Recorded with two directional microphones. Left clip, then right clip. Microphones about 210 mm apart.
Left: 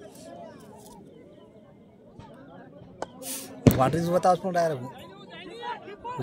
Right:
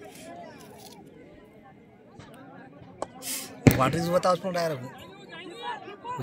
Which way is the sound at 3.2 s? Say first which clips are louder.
Left 1 dB; 45° left (ahead or behind).